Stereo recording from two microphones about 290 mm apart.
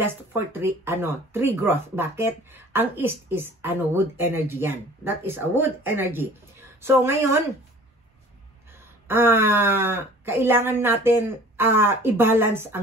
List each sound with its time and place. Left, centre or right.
0.0 s speech: centre
9.0 s speech: centre